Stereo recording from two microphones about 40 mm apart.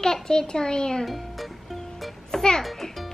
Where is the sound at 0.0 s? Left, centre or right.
Centre.